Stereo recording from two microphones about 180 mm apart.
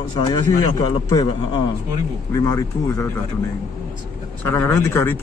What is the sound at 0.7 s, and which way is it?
A man's voice, 20° left (ahead or behind).